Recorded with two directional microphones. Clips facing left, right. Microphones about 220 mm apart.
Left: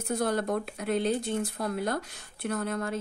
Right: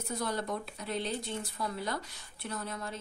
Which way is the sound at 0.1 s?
55° left (ahead or behind).